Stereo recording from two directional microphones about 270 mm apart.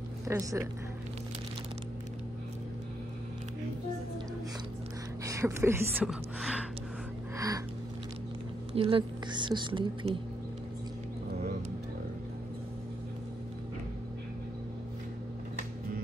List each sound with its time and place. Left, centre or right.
0.3 s a woman's voice: centre
5.2 s speech: centre
7.3 s music: centre
8.7 s a woman's voice: centre